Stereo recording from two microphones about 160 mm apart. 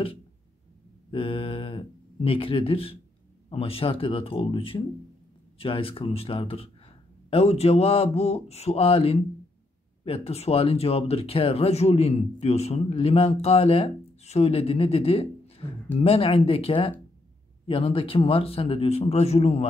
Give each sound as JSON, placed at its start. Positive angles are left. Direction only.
{"t": 1.1, "sound": "speech", "side_deg": 35}